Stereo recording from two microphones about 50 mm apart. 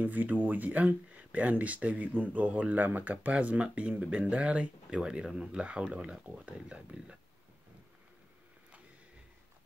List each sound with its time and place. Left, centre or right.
0.0 s speech: right
4.9 s speech: centre